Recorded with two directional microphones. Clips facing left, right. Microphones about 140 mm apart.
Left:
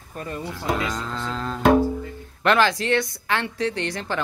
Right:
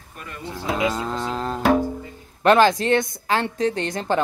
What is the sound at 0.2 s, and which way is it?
Speech, 35° left (ahead or behind).